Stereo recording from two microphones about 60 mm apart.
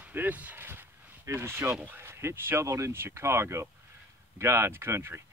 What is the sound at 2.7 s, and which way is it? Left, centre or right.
Speech, right.